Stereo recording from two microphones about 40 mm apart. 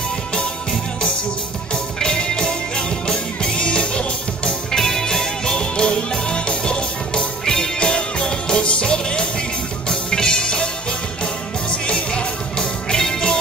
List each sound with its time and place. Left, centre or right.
2.0 s music: centre
4.7 s music: centre
11.9 s music: left